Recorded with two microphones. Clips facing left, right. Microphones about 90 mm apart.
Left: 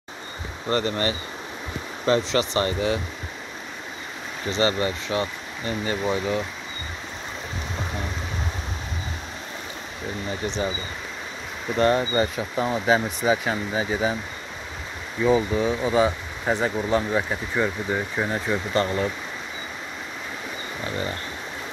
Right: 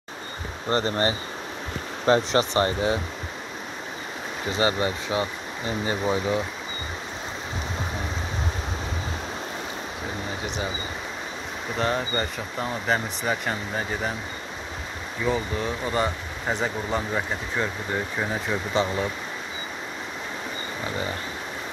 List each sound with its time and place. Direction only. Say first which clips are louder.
0.7 s speech: even; 30° right (ahead or behind)
4.6 s speech: left 1 dB; 20° right (ahead or behind)
10.4 s speech: left 5 dB; 5° right (ahead or behind)
11.7 s speech: left 6 dB; centre (ahead or behind)
15.2 s speech: left 6 dB; 10° left (ahead or behind)